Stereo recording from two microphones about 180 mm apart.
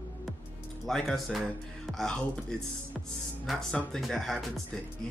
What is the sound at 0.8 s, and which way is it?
Speech, centre (ahead or behind).